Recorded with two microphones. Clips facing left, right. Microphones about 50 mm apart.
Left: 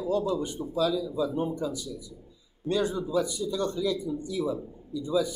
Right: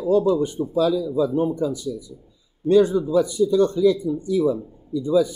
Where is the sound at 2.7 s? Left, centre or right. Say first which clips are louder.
Right 11 dB; right.